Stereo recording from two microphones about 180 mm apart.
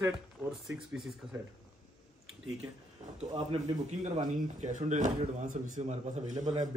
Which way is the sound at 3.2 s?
40° right (ahead or behind).